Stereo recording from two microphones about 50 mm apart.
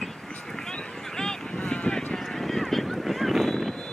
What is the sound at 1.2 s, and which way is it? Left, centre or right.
Boat, centre.